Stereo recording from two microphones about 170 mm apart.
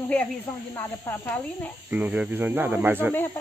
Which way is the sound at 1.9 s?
10° right (ahead or behind).